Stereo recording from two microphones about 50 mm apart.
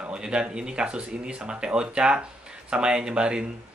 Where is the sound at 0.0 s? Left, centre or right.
Centre.